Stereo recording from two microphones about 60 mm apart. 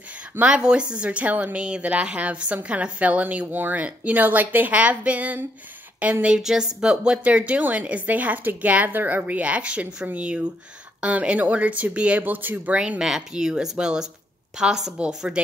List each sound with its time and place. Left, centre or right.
0.4 s a woman's voice: centre
6.2 s a woman's voice: centre; by 12.7 s right
12.7 s speech: centre